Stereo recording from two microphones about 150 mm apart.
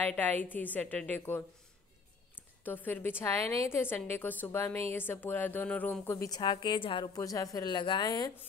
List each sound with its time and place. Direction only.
0.0 s a woman's voice: 10° left (ahead or behind); by 7.1 s 35° left (ahead or behind)
7.2 s a woman's voice: 20° left (ahead or behind)